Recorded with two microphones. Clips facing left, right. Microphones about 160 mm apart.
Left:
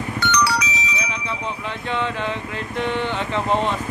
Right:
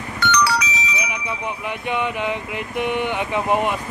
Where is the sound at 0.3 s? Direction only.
55° right (ahead or behind).